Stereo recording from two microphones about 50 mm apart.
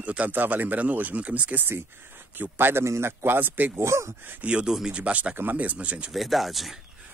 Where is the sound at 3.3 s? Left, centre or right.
Right.